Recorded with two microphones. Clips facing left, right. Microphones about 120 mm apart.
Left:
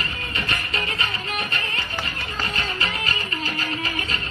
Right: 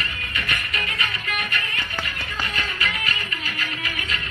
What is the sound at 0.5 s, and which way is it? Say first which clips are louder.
Music: left 1 dB; 30° left (ahead or behind).